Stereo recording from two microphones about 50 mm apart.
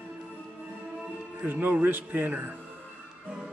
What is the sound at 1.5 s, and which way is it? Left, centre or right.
Speech, right.